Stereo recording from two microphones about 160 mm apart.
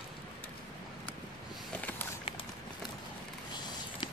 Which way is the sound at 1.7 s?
10° left (ahead or behind).